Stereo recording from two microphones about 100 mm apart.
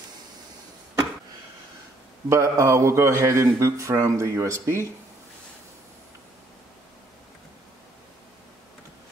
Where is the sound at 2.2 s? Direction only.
30° right (ahead or behind).